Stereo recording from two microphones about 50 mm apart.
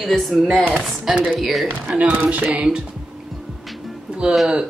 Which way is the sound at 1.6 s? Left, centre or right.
Right.